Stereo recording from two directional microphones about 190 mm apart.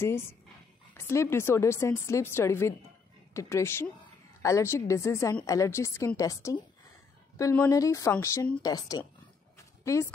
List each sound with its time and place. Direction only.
0.0 s a woman's voice: 15° left (ahead or behind)